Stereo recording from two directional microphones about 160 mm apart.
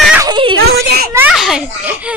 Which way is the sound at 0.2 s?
30° right (ahead or behind).